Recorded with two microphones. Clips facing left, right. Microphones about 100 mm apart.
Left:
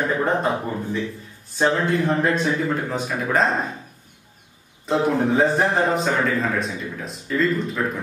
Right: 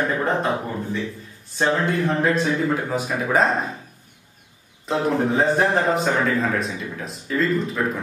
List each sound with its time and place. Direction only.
0.2 s a man's voice: centre (ahead or behind)
4.8 s a man's voice: centre (ahead or behind)